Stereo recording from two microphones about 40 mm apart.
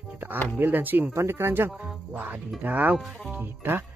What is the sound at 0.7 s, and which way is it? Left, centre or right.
Speech, right.